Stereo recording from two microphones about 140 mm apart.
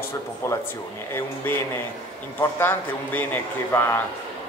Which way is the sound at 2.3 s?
15° left (ahead or behind).